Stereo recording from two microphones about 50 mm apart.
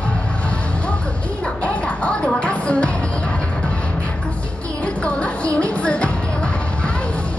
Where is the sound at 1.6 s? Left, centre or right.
Left.